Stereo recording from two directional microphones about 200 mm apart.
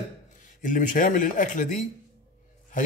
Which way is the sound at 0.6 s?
40° left (ahead or behind).